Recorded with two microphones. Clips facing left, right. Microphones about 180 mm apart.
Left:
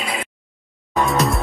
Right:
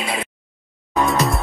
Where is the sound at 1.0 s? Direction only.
Centre (ahead or behind).